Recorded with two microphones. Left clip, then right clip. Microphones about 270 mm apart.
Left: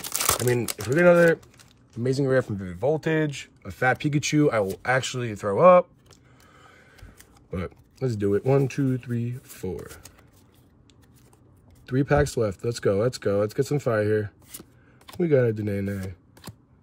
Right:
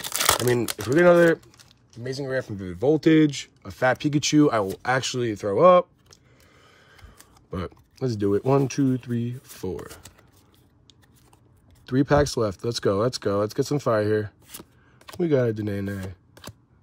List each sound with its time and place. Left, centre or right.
0.0 s speech: centre
2.5 s speech: centre
3.6 s speech: centre
4.8 s a sound: centre
7.5 s speech: centre
11.8 s speech: centre